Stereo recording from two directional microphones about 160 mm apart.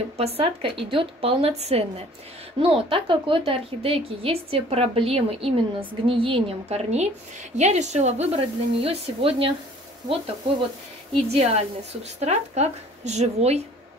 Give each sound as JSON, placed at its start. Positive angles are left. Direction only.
{"t": 0.2, "sound": "speech", "side_deg": -35}
{"t": 11.1, "sound": "speech", "side_deg": -40}